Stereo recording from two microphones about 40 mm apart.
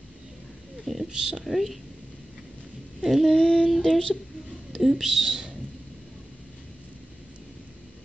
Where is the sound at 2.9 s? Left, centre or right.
Centre.